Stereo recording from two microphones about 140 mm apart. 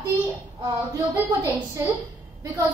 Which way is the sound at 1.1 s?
15° right (ahead or behind).